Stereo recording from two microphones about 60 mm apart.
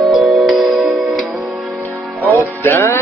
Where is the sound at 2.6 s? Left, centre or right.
Left.